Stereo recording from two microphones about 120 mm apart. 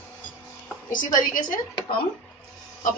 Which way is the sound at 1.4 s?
40° left (ahead or behind).